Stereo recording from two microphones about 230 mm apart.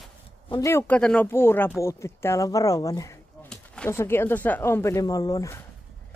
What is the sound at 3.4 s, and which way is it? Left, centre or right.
Speech, centre.